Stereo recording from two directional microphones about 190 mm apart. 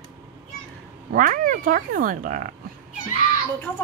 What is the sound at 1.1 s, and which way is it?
Speech, 45° right (ahead or behind).